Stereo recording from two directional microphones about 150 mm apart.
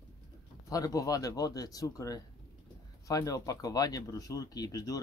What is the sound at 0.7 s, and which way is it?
Speech, 25° left (ahead or behind).